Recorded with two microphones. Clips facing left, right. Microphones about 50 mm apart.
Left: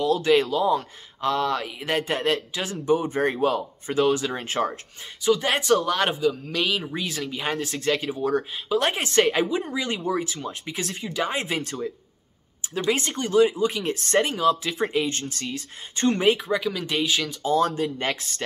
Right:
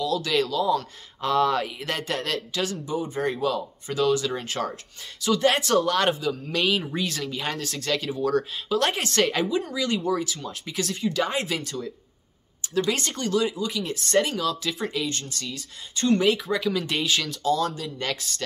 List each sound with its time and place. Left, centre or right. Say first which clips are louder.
0.0 s speech: left 4 dB; left
1.2 s speech: right 2 dB; centre
1.8 s speech: left 3 dB; centre
2.8 s speech: left 5 dB; left
5.2 s speech: even; centre
9.7 s speech: right 1 dB; left
11.4 s speech: left 2 dB; left
12.6 s speech: even; centre
16.4 s speech: even; centre
17.4 s speech: left 5 dB; left